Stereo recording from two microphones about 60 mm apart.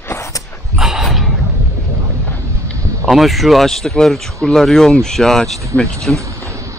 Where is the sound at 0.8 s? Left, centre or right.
Centre.